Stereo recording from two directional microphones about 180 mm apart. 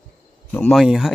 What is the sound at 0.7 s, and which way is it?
Speech, centre (ahead or behind).